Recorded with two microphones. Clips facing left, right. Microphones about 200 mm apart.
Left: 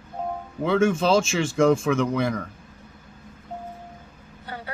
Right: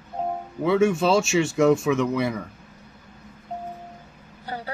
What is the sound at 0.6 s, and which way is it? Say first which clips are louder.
Speech: right 1 dB; 5° right (ahead or behind).